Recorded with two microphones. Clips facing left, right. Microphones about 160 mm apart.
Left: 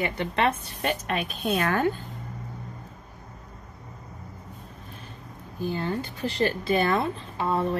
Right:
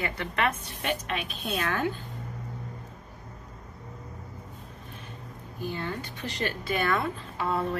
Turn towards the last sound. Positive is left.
turn(degrees=30)  # may be behind; listen again after turning